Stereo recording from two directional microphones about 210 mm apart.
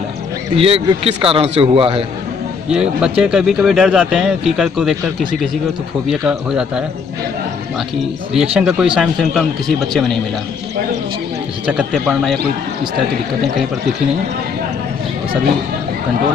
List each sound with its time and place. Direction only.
0.6 s a man's voice: 25° right (ahead or behind)
2.7 s speech: 5° right (ahead or behind)
6.0 s speech: 5° right (ahead or behind)
8.3 s speech: centre (ahead or behind)
11.6 s speech: 5° right (ahead or behind)